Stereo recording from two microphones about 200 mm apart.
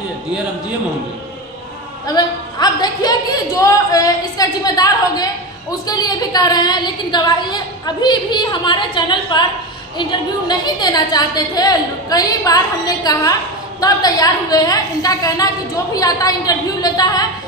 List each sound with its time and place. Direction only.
2.1 s a woman's voice: 20° left (ahead or behind)
10.5 s a woman's voice: 20° left (ahead or behind)